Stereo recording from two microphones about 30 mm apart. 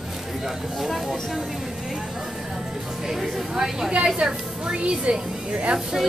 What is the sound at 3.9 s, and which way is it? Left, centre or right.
A woman's voice, right.